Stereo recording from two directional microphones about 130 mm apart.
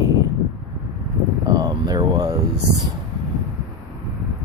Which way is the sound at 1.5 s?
30° right (ahead or behind).